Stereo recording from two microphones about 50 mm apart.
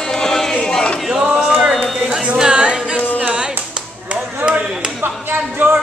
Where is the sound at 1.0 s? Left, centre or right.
Centre.